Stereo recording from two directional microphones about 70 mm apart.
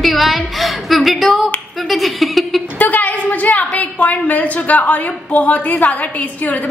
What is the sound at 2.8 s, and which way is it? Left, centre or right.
A woman's voice, left.